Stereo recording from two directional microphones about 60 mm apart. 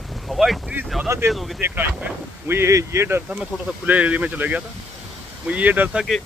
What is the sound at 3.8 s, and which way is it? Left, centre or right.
Speech, right.